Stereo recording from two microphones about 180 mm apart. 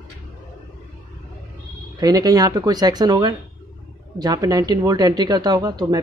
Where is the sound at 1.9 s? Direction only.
20° right (ahead or behind).